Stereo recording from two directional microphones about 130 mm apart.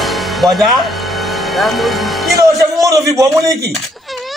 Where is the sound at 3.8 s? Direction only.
Centre (ahead or behind).